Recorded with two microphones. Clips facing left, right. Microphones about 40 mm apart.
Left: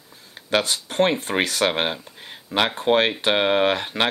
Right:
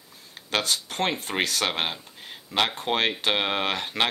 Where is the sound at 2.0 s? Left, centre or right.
Left.